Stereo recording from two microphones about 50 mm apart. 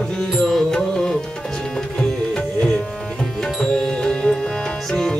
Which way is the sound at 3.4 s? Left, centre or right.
Centre.